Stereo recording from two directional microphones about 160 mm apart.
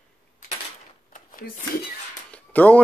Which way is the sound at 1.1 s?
60° left (ahead or behind).